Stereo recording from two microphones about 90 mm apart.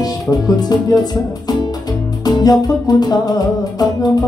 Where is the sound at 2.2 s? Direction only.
45° left (ahead or behind).